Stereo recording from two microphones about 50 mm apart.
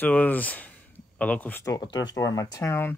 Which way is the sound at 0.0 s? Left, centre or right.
Left.